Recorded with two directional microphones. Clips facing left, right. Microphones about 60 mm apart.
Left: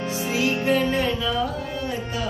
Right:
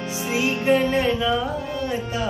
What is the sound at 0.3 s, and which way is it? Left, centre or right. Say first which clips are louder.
Music: right 2 dB; right.